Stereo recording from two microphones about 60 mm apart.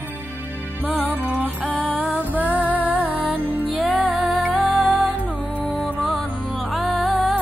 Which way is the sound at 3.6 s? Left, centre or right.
Right.